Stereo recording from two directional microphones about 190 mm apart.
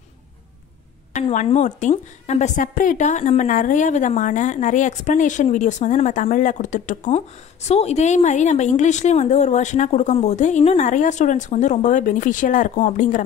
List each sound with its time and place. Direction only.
1.3 s a woman's voice: 40° left (ahead or behind)